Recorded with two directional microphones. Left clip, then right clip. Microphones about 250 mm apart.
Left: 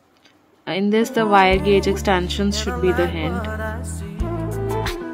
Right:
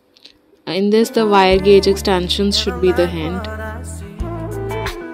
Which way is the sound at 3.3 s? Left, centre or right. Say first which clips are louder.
Even; centre.